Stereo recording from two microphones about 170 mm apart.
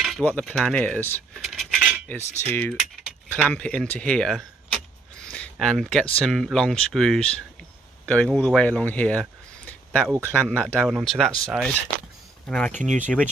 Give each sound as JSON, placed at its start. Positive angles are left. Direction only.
{"t": 0.0, "sound": "speech", "side_deg": 5}
{"t": 1.4, "sound": "cutlery", "side_deg": 0}
{"t": 2.4, "sound": "speech", "side_deg": 10}
{"t": 5.2, "sound": "a sound", "side_deg": 5}
{"t": 6.2, "sound": "speech", "side_deg": 0}
{"t": 8.0, "sound": "a sound", "side_deg": 5}
{"t": 8.4, "sound": "speech", "side_deg": 5}
{"t": 12.7, "sound": "speech", "side_deg": -45}